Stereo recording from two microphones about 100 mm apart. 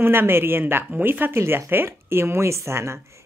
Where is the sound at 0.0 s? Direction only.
20° right (ahead or behind).